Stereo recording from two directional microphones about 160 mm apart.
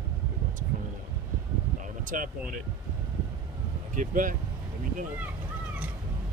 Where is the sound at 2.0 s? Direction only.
55° right (ahead or behind).